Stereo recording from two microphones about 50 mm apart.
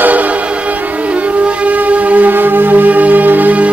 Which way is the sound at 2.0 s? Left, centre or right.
Right.